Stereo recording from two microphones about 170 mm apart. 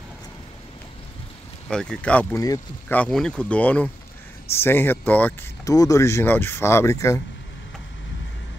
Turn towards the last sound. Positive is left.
turn(degrees=15)  # may be behind; listen again after turning